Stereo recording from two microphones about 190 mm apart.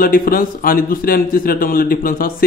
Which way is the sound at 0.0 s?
50° left (ahead or behind).